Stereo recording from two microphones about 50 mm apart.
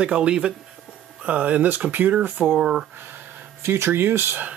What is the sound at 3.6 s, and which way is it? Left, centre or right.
Speech, right.